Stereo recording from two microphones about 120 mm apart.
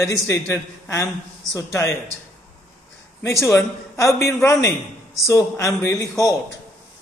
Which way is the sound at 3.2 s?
25° left (ahead or behind).